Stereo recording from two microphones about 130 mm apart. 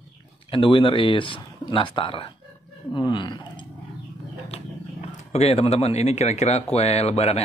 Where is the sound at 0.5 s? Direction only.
40° left (ahead or behind).